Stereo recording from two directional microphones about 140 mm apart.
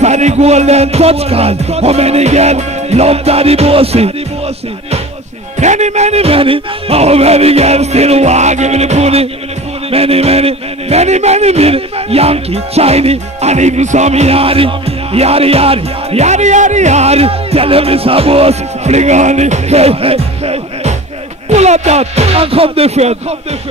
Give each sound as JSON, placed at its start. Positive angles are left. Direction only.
{"t": 0.0, "sound": "speech", "side_deg": -55}
{"t": 5.6, "sound": "speech", "side_deg": -55}